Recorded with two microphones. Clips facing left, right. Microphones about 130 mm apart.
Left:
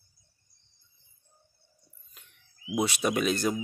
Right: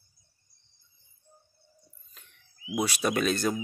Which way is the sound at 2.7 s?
20° left (ahead or behind).